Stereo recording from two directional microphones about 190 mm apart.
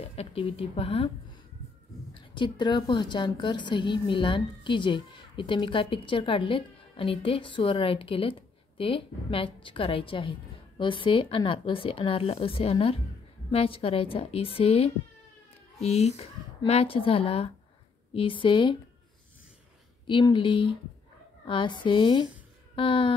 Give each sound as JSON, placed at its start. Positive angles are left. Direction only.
{"t": 0.0, "sound": "a woman's voice", "side_deg": 30}
{"t": 20.1, "sound": "a woman's voice", "side_deg": 25}